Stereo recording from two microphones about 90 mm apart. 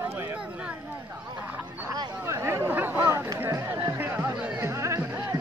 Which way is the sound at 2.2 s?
30° right (ahead or behind).